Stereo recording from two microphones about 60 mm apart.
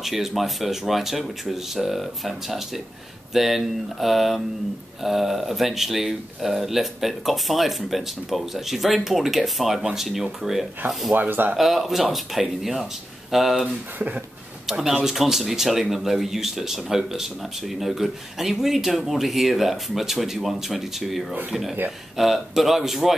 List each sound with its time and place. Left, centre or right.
0.0 s speech: centre
11.1 s speech: right
11.5 s speech: centre
13.7 s speech: right
14.7 s speech: centre